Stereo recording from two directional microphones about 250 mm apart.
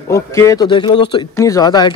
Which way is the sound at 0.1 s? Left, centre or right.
Centre.